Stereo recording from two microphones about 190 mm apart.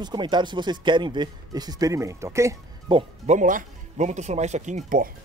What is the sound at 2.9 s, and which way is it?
Speech, 40° right (ahead or behind).